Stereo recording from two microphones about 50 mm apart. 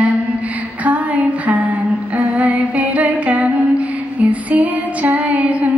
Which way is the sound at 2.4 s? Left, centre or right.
Right.